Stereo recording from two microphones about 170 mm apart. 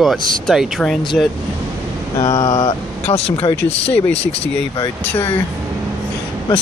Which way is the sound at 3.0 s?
35° left (ahead or behind).